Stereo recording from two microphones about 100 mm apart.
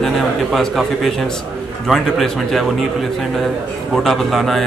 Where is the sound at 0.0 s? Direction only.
Centre (ahead or behind).